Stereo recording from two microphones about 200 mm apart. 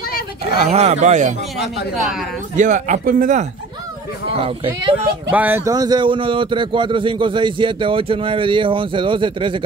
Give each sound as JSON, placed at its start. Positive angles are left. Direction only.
{"t": 0.7, "sound": "a man's voice", "side_deg": -35}
{"t": 2.0, "sound": "speech", "side_deg": 0}
{"t": 2.5, "sound": "a man's voice", "side_deg": -40}
{"t": 4.4, "sound": "a man's voice", "side_deg": -25}
{"t": 5.3, "sound": "a man's voice", "side_deg": -10}